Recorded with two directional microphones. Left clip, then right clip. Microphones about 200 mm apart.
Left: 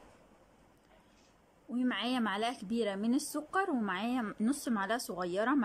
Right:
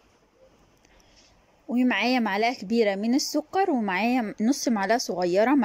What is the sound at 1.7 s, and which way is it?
A woman's voice, 20° right (ahead or behind).